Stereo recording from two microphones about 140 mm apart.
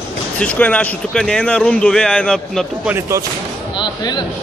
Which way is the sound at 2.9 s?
20° right (ahead or behind).